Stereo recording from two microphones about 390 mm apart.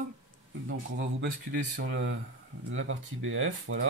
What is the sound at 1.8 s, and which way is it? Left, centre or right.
Speech, right.